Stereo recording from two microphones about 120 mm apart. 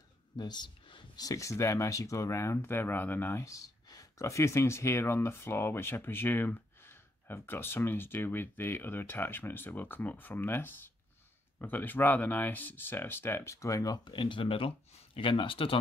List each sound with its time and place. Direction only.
0.4 s speech: 35° left (ahead or behind)